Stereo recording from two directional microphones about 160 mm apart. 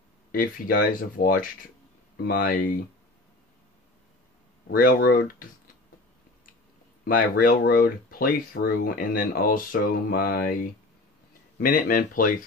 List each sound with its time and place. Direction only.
0.3 s speech: 65° left (ahead or behind)
4.6 s speech: 70° left (ahead or behind)
7.1 s speech: 60° left (ahead or behind)
11.6 s speech: 60° left (ahead or behind)